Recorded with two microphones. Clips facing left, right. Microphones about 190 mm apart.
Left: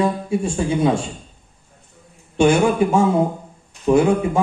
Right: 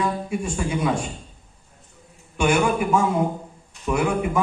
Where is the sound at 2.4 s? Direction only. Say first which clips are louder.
Left 5 dB; 25° left (ahead or behind).